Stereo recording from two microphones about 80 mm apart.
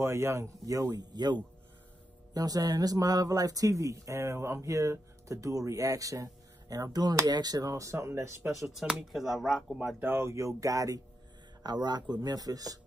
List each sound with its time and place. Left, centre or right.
0.0 s speech: right
8.5 s speech: centre
9.9 s speech: right
11.6 s speech: right